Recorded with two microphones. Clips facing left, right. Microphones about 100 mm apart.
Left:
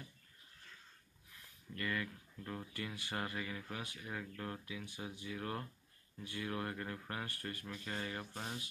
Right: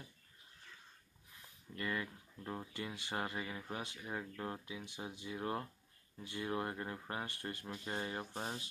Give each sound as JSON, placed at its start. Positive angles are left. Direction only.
{"t": 1.8, "sound": "speech", "side_deg": -25}